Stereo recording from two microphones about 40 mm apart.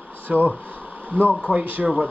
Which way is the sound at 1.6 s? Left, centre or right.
Right.